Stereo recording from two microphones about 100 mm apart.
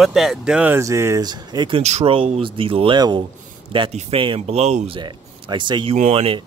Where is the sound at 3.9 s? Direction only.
70° right (ahead or behind).